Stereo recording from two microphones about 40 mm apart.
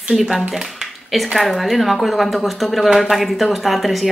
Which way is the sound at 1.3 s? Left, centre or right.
Centre.